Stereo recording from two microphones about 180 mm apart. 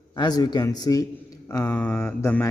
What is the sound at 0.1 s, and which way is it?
Speech, 20° left (ahead or behind).